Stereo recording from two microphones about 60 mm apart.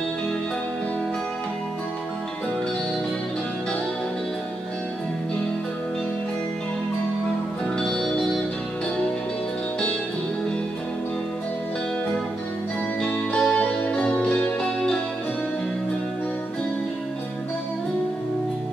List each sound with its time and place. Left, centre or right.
7.6 s music: centre
13.1 s music: centre